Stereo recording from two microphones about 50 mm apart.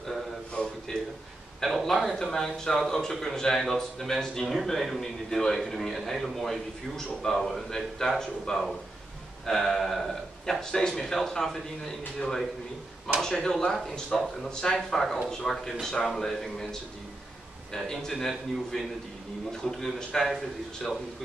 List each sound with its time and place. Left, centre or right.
0.9 s a man's voice: centre
13.4 s speech: centre
13.8 s a man's voice: centre
17.7 s speech: centre